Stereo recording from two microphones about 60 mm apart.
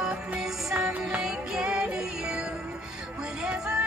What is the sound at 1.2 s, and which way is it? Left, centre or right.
Music, centre.